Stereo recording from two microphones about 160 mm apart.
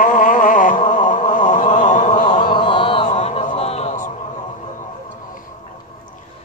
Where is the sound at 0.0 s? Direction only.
55° left (ahead or behind).